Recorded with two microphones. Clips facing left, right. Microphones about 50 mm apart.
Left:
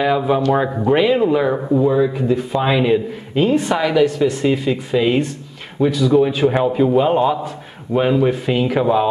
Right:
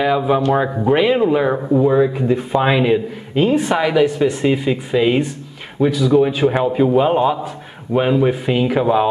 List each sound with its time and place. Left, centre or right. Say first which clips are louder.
0.0 s speech: even; centre
2.1 s a man's voice: right 1 dB; right; by 9.1 s centre